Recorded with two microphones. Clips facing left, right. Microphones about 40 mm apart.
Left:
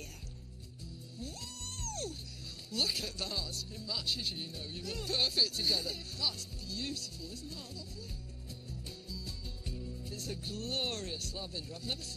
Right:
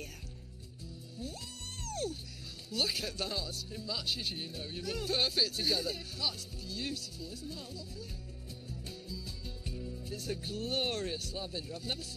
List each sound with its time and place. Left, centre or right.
1.8 s music: centre
2.7 s speech: centre
8.8 s music: centre